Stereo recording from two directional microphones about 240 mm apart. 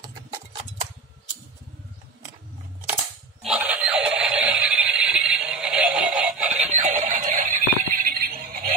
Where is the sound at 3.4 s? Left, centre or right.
Centre.